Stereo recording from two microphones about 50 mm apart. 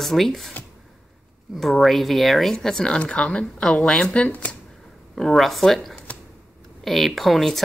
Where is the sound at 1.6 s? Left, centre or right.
Centre.